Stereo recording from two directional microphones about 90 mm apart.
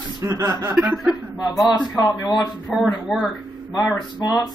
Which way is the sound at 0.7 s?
20° right (ahead or behind).